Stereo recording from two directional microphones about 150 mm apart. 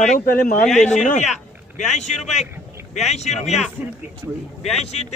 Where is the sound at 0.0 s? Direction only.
50° left (ahead or behind).